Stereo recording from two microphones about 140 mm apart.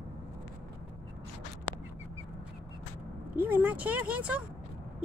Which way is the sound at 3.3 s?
10° right (ahead or behind).